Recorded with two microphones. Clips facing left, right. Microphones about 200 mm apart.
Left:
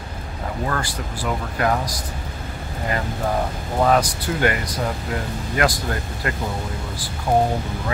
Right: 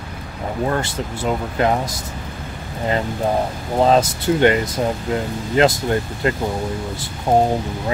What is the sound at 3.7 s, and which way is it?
Speech, 25° right (ahead or behind).